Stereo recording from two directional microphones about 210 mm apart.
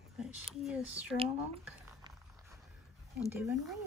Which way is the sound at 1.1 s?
25° right (ahead or behind).